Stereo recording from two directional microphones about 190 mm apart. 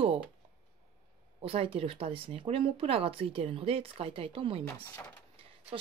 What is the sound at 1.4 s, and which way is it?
Speech, 30° right (ahead or behind).